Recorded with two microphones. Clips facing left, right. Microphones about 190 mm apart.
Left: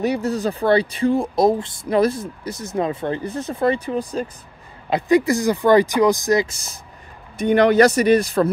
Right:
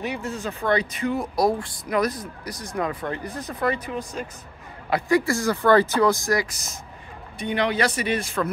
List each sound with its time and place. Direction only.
0.0 s speech: 40° left (ahead or behind)
4.8 s speech: 20° left (ahead or behind)
7.3 s a man's voice: 45° left (ahead or behind)